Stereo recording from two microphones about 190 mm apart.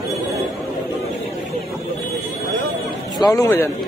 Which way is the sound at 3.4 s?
15° left (ahead or behind).